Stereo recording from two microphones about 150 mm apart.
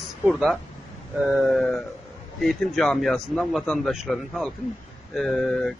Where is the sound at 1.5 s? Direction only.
5° left (ahead or behind).